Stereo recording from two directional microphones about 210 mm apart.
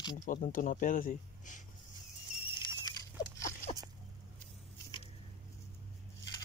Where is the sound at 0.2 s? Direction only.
40° left (ahead or behind).